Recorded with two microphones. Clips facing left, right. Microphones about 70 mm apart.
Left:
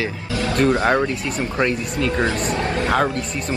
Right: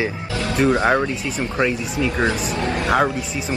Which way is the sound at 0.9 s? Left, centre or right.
Centre.